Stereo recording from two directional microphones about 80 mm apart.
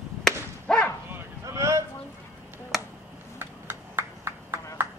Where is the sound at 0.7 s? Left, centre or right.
Centre.